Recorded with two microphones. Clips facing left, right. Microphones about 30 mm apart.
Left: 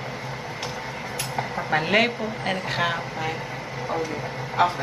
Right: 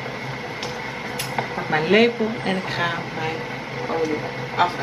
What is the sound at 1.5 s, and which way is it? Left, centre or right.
Speech, centre.